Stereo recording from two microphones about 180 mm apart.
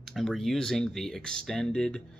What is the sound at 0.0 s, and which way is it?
Speech, centre (ahead or behind).